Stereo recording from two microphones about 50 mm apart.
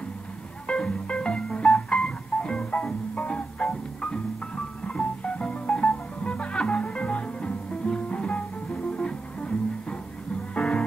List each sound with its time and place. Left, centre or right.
0.7 s music: centre
4.8 s music: left